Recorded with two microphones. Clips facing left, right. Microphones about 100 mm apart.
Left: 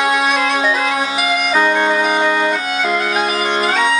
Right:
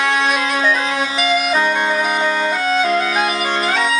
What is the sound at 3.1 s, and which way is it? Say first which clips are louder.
Bagpipes: left 1 dB; 15° left (ahead or behind).